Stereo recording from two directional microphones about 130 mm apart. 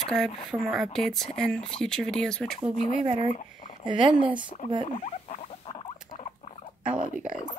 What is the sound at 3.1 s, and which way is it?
Speech, 65° left (ahead or behind).